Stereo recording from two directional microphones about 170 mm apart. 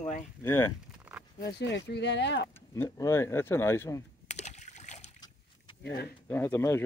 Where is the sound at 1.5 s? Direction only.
85° left.